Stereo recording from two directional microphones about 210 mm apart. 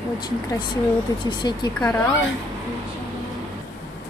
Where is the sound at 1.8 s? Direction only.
5° left (ahead or behind).